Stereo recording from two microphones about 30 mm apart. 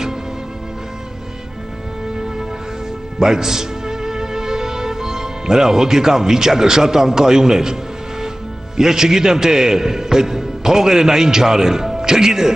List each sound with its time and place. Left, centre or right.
3.2 s speech: centre
8.7 s a man's voice: centre